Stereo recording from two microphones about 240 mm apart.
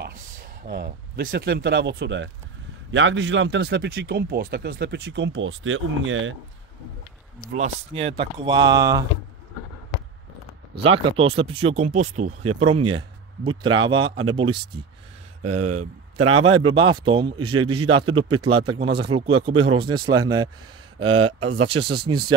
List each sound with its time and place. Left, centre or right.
0.7 s speech: right
7.5 s speech: right
10.7 s speech: right
15.5 s a man's voice: right
16.7 s speech: centre
17.4 s a man's voice: right
17.8 s speech: right